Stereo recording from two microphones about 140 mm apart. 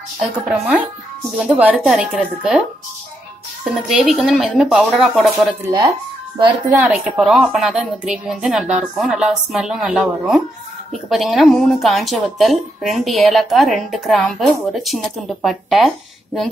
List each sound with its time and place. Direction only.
0.5 s speech: 10° right (ahead or behind)
3.6 s speech: centre (ahead or behind)
5.6 s speech: 25° right (ahead or behind)
6.9 s speech: 5° right (ahead or behind)